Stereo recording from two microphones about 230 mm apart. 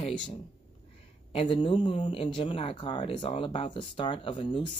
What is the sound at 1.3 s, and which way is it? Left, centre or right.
Speech, left.